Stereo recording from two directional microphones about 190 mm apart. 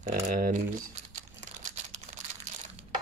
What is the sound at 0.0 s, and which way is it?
Speech, 45° right (ahead or behind).